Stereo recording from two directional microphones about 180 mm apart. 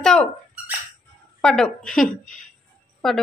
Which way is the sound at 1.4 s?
5° left (ahead or behind).